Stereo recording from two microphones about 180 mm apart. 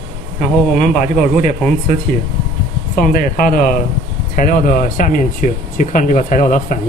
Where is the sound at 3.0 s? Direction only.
50° left (ahead or behind).